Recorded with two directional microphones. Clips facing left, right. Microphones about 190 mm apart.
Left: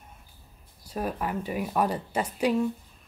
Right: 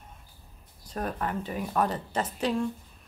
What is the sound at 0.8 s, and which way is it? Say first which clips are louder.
A woman's voice: left 1 dB; 10° left (ahead or behind).